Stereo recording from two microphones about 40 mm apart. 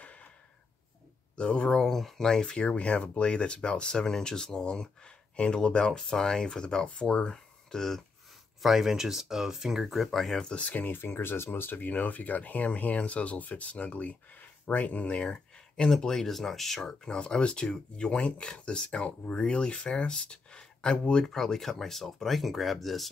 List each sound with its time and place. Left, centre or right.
0.0 s a sound: left
1.3 s speech: left
1.7 s speech: centre
8.6 s speech: centre
9.8 s speech: centre
10.4 s speech: left
10.8 s speech: left
11.9 s speech: left
15.2 s speech: centre
17.0 s speech: centre
21.3 s speech: centre